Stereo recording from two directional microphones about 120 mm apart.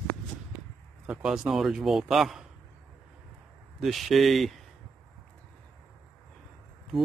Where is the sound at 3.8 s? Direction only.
Centre (ahead or behind).